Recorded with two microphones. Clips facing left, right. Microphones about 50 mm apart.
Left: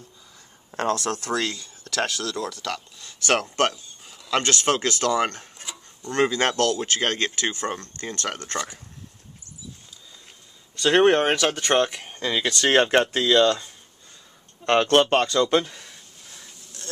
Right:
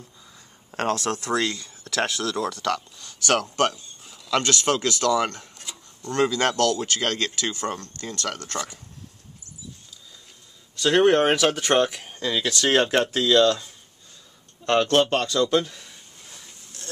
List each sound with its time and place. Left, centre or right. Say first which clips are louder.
0.9 s speech: right 1 dB; right
3.0 s speech: left 5 dB; left
4.0 s a sound: even; centre
4.3 s speech: even; left
10.8 s speech: left 1 dB; centre
11.1 s speech: right 2 dB; centre
14.6 s a sound: left 1 dB; left
15.0 s speech: left 2 dB; left
15.5 s speech: left 1 dB; centre
16.3 s insect: left 2 dB; centre